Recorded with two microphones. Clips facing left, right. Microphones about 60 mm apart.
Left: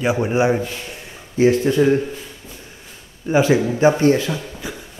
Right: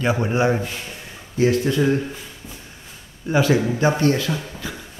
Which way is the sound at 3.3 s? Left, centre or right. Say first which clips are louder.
Left 2 dB; centre.